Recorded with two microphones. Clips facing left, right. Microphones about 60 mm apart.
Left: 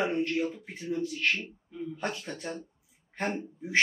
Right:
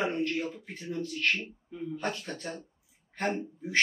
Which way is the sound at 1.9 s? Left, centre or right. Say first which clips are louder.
Right 1 dB; centre.